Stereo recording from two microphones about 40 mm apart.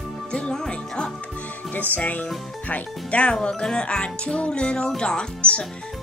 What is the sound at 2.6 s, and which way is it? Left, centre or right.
Speech, left.